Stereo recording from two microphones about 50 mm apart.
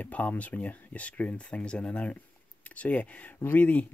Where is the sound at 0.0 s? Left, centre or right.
Left.